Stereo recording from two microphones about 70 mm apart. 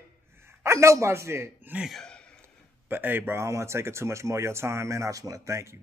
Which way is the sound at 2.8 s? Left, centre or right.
Right.